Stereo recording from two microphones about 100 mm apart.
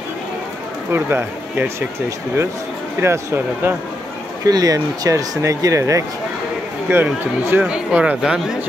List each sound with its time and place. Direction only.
0.9 s speech: 20° right (ahead or behind)
4.5 s speech: 40° right (ahead or behind)
6.9 s speech: 20° right (ahead or behind)
7.6 s speech: 10° right (ahead or behind)